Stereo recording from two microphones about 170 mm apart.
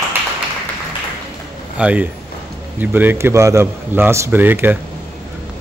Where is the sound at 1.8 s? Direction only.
10° right (ahead or behind).